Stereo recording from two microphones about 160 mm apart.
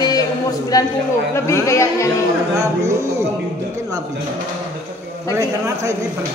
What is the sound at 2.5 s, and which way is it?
Speech, 20° right (ahead or behind).